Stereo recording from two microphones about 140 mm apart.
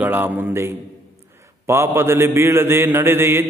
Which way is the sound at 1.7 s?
20° right (ahead or behind).